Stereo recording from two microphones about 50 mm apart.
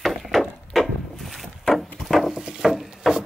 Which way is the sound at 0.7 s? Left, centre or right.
Centre.